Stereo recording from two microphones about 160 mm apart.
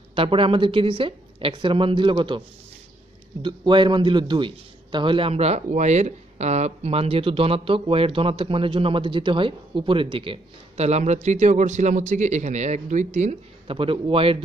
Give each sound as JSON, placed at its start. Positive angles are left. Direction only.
{"t": 0.1, "sound": "a man's voice", "side_deg": -35}
{"t": 3.4, "sound": "a man's voice", "side_deg": -30}